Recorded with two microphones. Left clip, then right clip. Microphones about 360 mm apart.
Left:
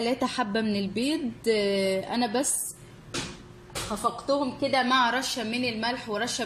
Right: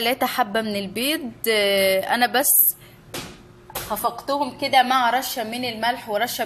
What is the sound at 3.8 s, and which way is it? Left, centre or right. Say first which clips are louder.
Speech: right 3 dB; right.